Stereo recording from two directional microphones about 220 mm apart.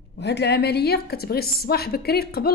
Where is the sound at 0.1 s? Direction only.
50° left (ahead or behind).